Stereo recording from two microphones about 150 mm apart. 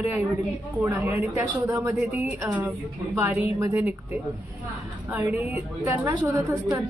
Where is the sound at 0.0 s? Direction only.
10° right (ahead or behind).